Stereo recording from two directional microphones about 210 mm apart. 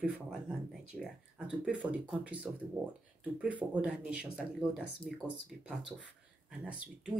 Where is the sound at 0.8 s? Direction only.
5° right (ahead or behind).